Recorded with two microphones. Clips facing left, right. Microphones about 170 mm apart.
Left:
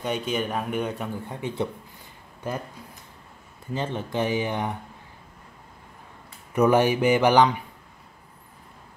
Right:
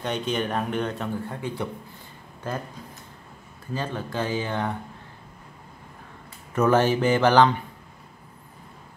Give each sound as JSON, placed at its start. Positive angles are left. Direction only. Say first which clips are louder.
{"t": 0.0, "sound": "speech", "louder": "even", "side_deg": 10}
{"t": 3.7, "sound": "speech", "louder": "left 2 dB", "side_deg": 20}
{"t": 6.5, "sound": "speech", "louder": "left 1 dB", "side_deg": 15}